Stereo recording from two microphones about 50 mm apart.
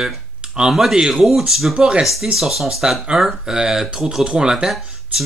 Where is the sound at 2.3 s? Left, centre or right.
Centre.